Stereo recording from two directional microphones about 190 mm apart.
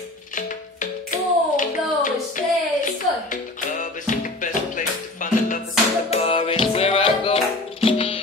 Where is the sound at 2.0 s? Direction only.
45° left (ahead or behind).